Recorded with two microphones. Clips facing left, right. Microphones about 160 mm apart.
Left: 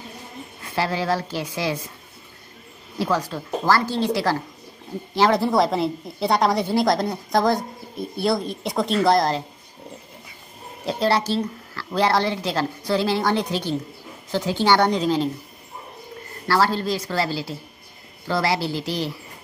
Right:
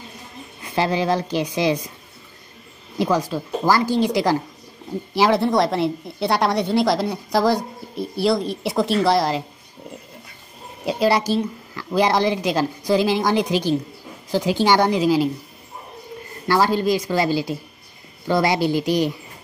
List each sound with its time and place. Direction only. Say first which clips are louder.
0.7 s a woman's voice: right 3 dB; 20° right (ahead or behind)
3.0 s speech: right 3 dB; 15° right (ahead or behind)
5.4 s a woman's voice: right 1 dB; centre (ahead or behind)
10.9 s speech: right 2 dB; 10° right (ahead or behind)
16.4 s speech: right 3 dB; 15° right (ahead or behind)